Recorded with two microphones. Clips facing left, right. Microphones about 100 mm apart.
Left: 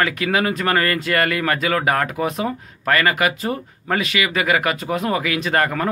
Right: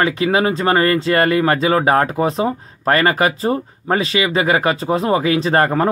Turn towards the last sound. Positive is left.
turn(degrees=-30)  # may be behind; listen again after turning